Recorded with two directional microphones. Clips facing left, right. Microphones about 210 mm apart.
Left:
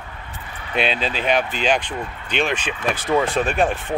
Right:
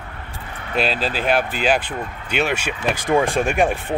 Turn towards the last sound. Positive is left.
turn(degrees=-10)  # may be behind; listen again after turning